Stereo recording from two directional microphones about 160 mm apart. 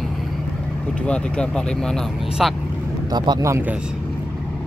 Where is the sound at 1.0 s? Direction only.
5° left (ahead or behind).